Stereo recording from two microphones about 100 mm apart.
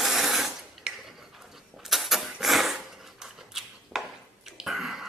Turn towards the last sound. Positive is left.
turn(degrees=-5)  # may be behind; listen again after turning